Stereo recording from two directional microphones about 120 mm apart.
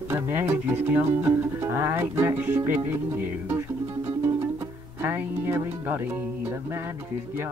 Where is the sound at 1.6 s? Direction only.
20° right (ahead or behind).